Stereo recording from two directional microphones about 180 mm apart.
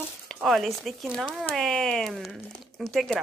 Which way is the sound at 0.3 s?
Centre (ahead or behind).